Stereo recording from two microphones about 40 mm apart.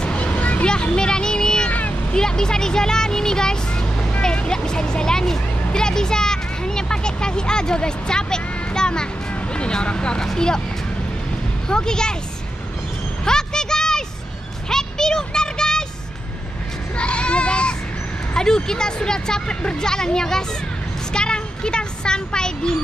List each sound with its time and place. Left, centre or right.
0.0 s a sound: left
0.9 s music: centre
1.7 s a sound: left
2.1 s speech: centre
4.2 s vehicle: centre
10.2 s speech: centre
11.7 s speech: centre
13.2 s a sound: centre
16.9 s child singing: left
18.3 s speech: centre